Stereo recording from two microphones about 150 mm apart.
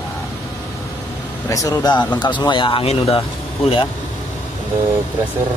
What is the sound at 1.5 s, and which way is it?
Speech, 20° left (ahead or behind).